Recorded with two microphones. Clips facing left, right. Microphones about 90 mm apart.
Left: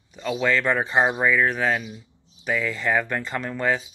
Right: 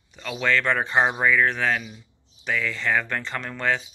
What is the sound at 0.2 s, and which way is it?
Speech, 15° left (ahead or behind).